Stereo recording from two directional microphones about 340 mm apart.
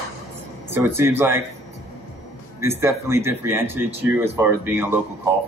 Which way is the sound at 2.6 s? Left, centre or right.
Centre.